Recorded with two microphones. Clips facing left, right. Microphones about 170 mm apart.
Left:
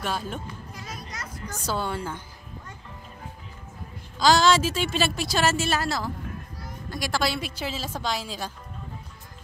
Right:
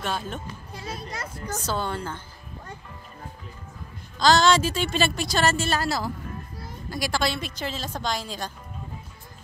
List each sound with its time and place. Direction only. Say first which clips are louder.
0.7 s a child's voice: right 8 dB; 30° right (ahead or behind)
1.7 s a woman's voice: left 1 dB; 10° left (ahead or behind)
4.2 s a woman's voice: even; 5° left (ahead or behind)